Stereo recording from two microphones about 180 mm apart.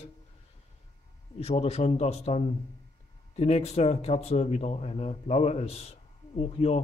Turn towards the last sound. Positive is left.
turn(degrees=35)  # may be behind; listen again after turning